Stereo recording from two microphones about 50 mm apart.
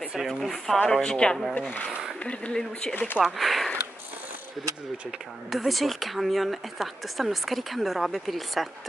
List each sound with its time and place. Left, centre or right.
0.3 s speech: centre
0.8 s a woman's voice: centre
2.9 s speech: left
3.3 s speech: centre
5.5 s speech: centre